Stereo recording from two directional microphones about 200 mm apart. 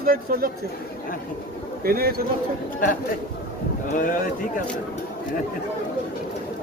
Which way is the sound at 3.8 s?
40° left (ahead or behind).